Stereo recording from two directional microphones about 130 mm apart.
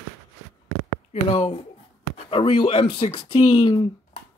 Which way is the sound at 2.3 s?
45° left (ahead or behind).